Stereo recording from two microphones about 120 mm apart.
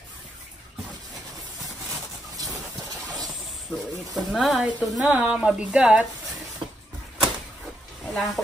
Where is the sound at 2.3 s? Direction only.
30° right (ahead or behind).